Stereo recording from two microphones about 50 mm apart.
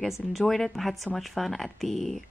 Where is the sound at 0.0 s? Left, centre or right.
Centre.